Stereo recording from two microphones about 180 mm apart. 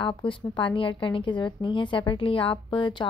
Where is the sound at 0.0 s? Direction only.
30° left (ahead or behind).